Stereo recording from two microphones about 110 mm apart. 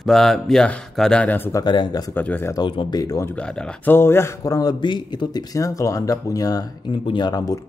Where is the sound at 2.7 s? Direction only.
50° left (ahead or behind).